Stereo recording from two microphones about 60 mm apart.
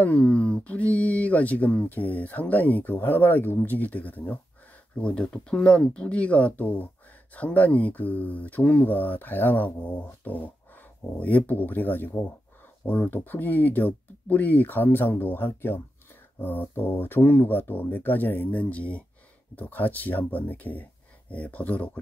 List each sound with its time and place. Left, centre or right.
0.0 s speech: left